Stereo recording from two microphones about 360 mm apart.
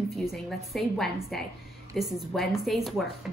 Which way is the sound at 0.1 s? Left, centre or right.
Centre.